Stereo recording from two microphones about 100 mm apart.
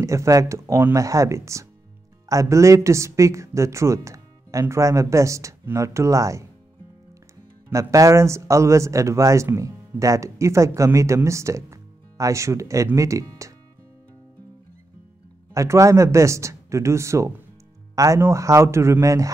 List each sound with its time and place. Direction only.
0.0 s speech: 30° right (ahead or behind)
7.7 s speech: 35° right (ahead or behind)
15.5 s speech: 30° right (ahead or behind)